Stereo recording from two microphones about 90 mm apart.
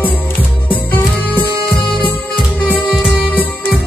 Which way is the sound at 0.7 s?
20° left (ahead or behind).